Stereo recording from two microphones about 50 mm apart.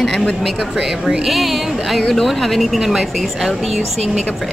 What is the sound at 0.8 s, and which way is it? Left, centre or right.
Speech, centre.